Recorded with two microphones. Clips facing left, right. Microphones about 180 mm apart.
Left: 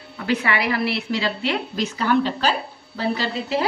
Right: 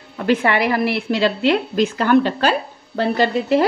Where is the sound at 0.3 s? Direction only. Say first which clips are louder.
Right 5 dB; 50° right (ahead or behind).